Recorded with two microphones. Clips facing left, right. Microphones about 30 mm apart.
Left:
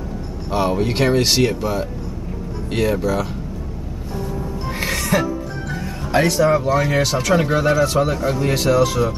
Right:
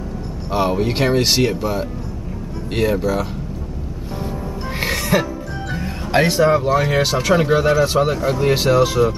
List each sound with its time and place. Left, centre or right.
0.5 s speech: centre
4.8 s music: centre
5.7 s music: right
6.7 s speech: centre